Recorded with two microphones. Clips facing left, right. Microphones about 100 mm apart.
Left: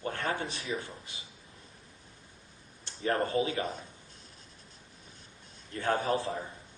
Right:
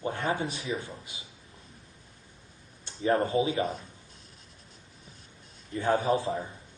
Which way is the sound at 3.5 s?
Centre (ahead or behind).